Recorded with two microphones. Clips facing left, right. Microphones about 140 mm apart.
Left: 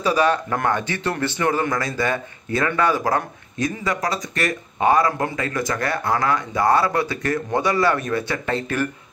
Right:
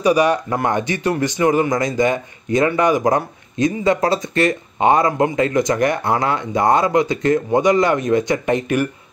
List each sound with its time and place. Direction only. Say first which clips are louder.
0.0 s speech: right 4 dB; 15° right (ahead or behind)